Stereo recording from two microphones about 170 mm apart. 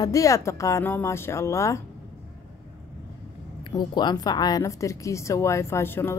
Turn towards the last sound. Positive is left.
turn(degrees=15)  # may be behind; listen again after turning